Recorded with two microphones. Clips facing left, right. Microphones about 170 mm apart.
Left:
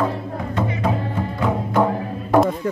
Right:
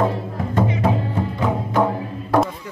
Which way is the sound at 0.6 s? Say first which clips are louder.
Right 2 dB; centre (ahead or behind).